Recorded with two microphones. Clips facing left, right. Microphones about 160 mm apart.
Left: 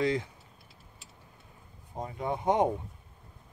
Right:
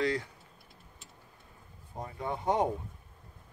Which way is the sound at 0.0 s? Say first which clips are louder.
Left 2 dB; 20° left (ahead or behind).